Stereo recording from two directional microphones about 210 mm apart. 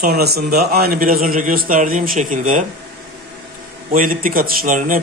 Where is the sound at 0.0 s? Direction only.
50° right (ahead or behind).